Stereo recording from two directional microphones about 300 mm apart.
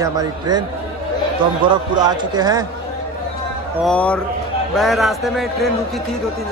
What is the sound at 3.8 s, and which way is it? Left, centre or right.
A man's voice, centre.